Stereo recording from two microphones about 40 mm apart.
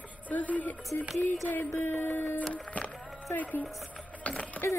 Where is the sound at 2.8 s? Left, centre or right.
Left.